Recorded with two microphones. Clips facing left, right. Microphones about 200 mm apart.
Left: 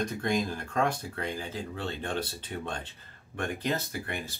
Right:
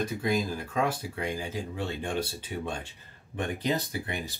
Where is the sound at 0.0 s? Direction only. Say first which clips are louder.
Right 1 dB; 5° right (ahead or behind).